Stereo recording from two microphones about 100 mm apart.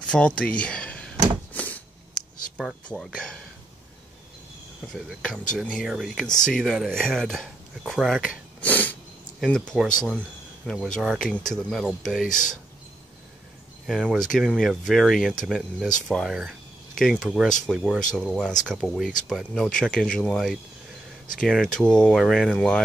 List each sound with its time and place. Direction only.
0.0 s speech: 10° left (ahead or behind)
1.5 s a sound: 15° left (ahead or behind)
2.2 s a sound: 5° left (ahead or behind)
2.9 s speech: 5° left (ahead or behind)
4.9 s speech: centre (ahead or behind)
8.5 s sneeze: 15° left (ahead or behind)
9.4 s speech: 10° left (ahead or behind)
13.8 s speech: 5° left (ahead or behind)
18.1 s speech: 5° left (ahead or behind)
21.5 s speech: 5° left (ahead or behind)